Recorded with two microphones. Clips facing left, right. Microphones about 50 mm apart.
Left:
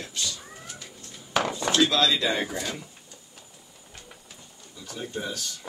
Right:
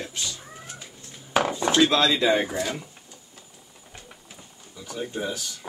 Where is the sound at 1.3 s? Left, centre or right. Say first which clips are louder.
Right 3 dB; centre.